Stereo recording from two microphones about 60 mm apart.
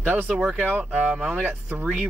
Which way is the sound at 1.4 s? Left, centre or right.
Right.